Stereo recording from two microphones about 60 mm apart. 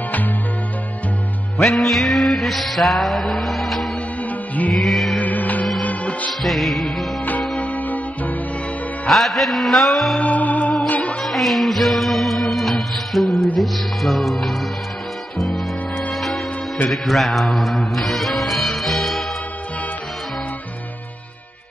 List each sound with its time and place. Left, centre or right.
1.6 s music: centre
4.3 s music: left
4.7 s music: centre
5.1 s music: left
6.4 s music: centre
7.6 s music: left
9.0 s music: centre
10.2 s music: left
11.1 s music: centre